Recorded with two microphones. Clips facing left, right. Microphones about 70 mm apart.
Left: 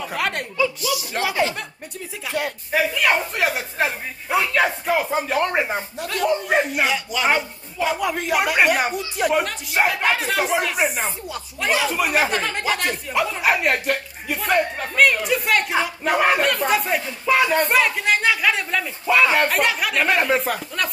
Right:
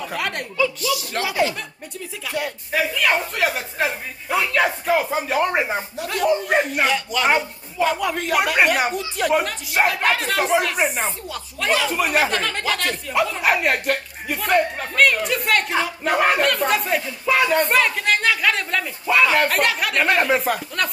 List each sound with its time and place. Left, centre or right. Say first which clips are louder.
1.2 s speech: even; left
2.7 s speech: left 1 dB; centre
11.2 s speech: even; centre
12.4 s speech: even; centre